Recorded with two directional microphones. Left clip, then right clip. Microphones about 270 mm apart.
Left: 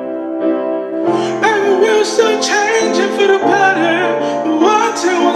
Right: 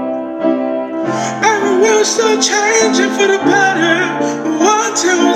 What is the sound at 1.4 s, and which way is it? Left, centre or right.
Music, centre.